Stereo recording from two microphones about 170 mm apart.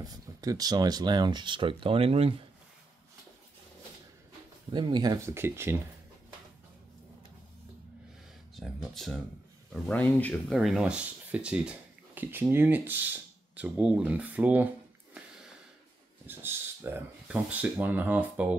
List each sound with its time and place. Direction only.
0.0 s speech: 20° right (ahead or behind)
4.7 s speech: 25° right (ahead or behind)
8.5 s speech: centre (ahead or behind)
16.3 s speech: 15° right (ahead or behind)